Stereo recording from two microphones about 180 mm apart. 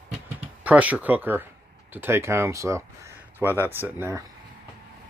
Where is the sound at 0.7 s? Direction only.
10° right (ahead or behind).